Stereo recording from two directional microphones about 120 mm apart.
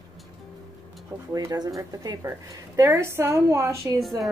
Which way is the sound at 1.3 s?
35° right (ahead or behind).